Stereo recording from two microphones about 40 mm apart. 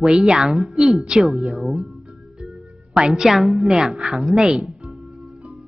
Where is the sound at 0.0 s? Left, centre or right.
Centre.